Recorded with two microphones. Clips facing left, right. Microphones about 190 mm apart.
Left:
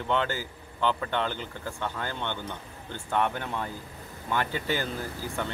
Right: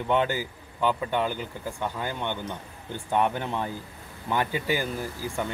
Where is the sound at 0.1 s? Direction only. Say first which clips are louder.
Right 3 dB; 15° right (ahead or behind).